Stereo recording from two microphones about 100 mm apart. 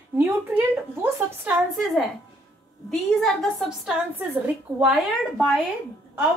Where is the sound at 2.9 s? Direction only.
Centre (ahead or behind).